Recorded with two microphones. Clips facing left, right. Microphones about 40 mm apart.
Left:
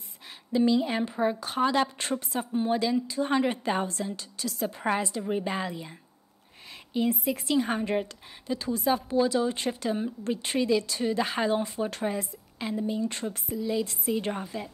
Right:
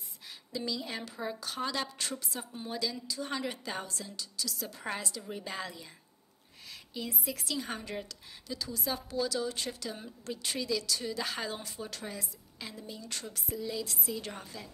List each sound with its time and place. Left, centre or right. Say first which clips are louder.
0.5 s a woman's voice: left 13 dB; left
13.5 s speech: left 7 dB; centre
13.8 s a woman's voice: left 9 dB; left